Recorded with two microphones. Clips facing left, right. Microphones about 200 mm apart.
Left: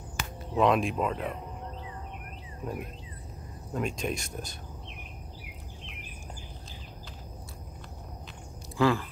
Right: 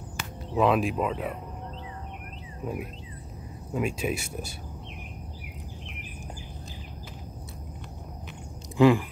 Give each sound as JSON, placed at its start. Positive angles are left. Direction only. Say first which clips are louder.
{"t": 0.6, "sound": "speech", "louder": "right 1 dB", "side_deg": -5}
{"t": 2.6, "sound": "speech", "louder": "right 3 dB", "side_deg": -5}
{"t": 8.7, "sound": "speech", "louder": "right 6 dB", "side_deg": -15}